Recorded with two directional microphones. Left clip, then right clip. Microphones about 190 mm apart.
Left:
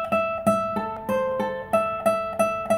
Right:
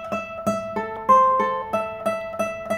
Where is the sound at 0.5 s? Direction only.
40° left (ahead or behind).